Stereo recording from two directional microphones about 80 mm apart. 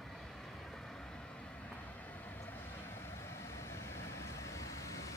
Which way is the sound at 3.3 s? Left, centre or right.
Left.